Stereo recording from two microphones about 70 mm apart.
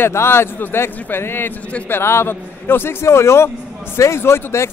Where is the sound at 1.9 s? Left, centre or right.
Left.